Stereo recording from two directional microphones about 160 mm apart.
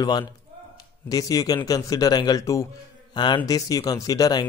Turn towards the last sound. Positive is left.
turn(degrees=25)  # may be behind; listen again after turning